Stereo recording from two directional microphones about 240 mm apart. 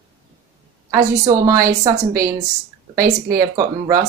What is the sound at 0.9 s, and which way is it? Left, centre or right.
Speech, centre.